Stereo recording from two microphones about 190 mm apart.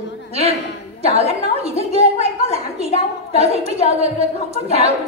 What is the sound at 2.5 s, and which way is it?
A woman's voice, 35° right (ahead or behind).